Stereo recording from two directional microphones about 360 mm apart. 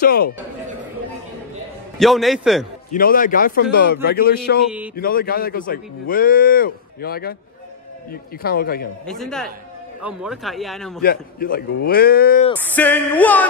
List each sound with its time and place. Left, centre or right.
0.0 s speech: left
2.0 s music: centre
2.9 s speech: left
9.0 s music: centre
11.0 s speech: left
12.5 s music: centre